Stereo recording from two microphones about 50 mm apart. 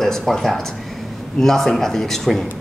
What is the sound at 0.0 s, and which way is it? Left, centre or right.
A man's voice, centre.